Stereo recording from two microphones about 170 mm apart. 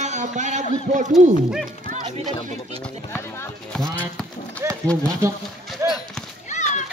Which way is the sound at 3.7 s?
5° left (ahead or behind).